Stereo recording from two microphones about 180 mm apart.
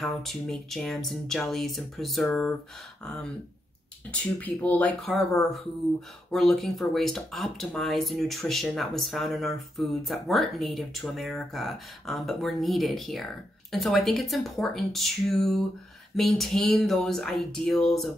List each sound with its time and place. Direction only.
0.0 s speech: centre (ahead or behind)
4.1 s speech: 10° left (ahead or behind)